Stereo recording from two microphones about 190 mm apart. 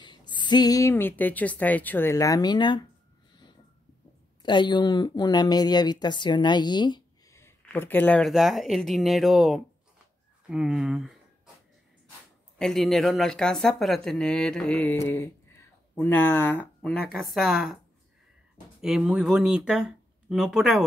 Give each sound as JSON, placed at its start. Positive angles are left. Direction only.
{"t": 0.0, "sound": "a woman's voice", "side_deg": 25}
{"t": 4.4, "sound": "speech", "side_deg": 25}
{"t": 12.5, "sound": "a woman's voice", "side_deg": 0}
{"t": 18.8, "sound": "speech", "side_deg": -5}